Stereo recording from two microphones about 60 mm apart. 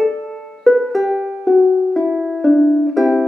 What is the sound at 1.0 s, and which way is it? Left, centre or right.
Music, right.